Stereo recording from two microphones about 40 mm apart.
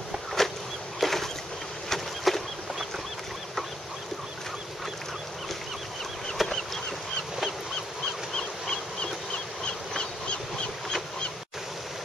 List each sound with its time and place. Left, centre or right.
0.4 s a sound: centre
6.3 s chicken: centre
8.4 s dog: centre